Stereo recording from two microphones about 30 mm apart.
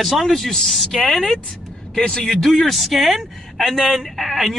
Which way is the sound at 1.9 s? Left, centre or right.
Left.